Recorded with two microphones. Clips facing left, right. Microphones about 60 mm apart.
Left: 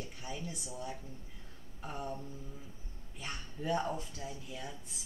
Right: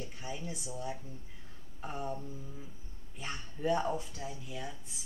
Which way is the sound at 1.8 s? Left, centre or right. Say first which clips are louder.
Right 2 dB; centre.